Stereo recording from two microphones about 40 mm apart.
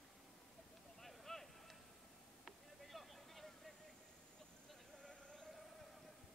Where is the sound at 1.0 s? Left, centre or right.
Centre.